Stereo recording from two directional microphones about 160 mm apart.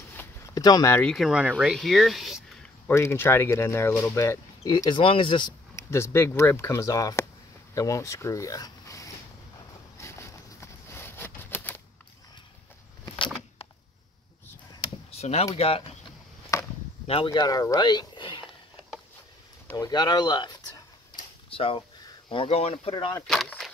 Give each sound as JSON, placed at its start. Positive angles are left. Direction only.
{"t": 0.2, "sound": "a sound", "side_deg": 15}
{"t": 0.6, "sound": "speech", "side_deg": 25}
{"t": 1.0, "sound": "speech", "side_deg": 0}
{"t": 2.9, "sound": "speech", "side_deg": 15}
{"t": 5.8, "sound": "speech", "side_deg": 15}
{"t": 9.9, "sound": "a sound", "side_deg": 15}
{"t": 15.0, "sound": "a sound", "side_deg": 40}
{"t": 15.5, "sound": "speech", "side_deg": 35}
{"t": 16.5, "sound": "chop", "side_deg": 20}
{"t": 17.1, "sound": "speech", "side_deg": 30}
{"t": 19.8, "sound": "speech", "side_deg": 25}
{"t": 23.2, "sound": "speech", "side_deg": 0}